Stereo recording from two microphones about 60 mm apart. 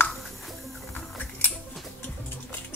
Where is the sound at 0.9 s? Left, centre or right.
Left.